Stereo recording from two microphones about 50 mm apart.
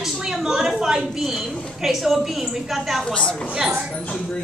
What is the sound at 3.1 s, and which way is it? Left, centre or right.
Speech, centre.